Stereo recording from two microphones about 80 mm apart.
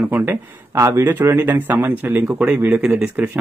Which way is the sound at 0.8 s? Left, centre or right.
Right.